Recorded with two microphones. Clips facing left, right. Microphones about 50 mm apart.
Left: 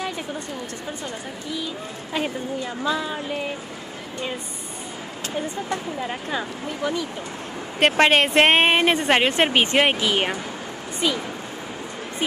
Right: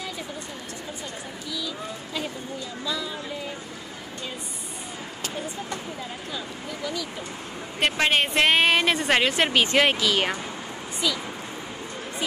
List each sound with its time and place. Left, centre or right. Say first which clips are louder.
2.8 s speech: left 5 dB; left
6.0 s speech: left 7 dB; left
7.8 s speech: left 5 dB; left
8.7 s speech: left 3 dB; left
11.0 s speech: left 4 dB; left